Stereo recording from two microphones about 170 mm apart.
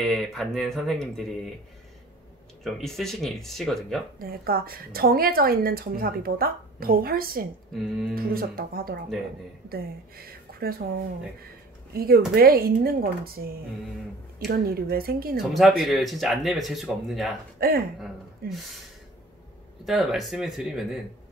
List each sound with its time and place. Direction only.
0.0 s speech: centre (ahead or behind)
2.6 s speech: centre (ahead or behind)
4.2 s a woman's voice: 60° right (ahead or behind)
7.7 s speech: centre (ahead or behind)
8.1 s a woman's voice: 60° right (ahead or behind)
11.9 s a woman's voice: 60° right (ahead or behind)
14.4 s a woman's voice: 65° right (ahead or behind)
15.8 s speech: centre (ahead or behind)
17.6 s a woman's voice: 60° right (ahead or behind)
19.8 s speech: centre (ahead or behind)